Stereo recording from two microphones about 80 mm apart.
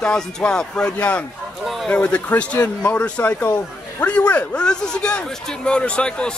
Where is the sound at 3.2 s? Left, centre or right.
Left.